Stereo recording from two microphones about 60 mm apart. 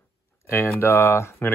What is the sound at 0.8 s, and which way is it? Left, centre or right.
Speech, left.